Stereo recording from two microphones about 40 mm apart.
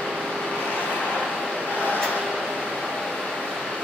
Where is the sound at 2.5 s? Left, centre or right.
Centre.